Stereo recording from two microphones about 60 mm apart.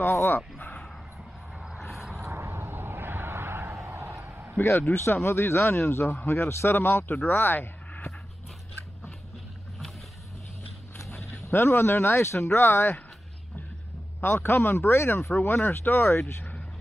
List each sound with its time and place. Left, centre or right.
0.0 s speech: left
1.8 s vehicle: centre
2.2 s a sound: right
3.7 s basketball bounce: right
4.9 s speech: left
11.5 s speech: left
14.2 s speech: left
15.3 s speech: left